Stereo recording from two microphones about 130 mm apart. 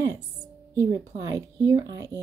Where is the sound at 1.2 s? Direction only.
25° right (ahead or behind).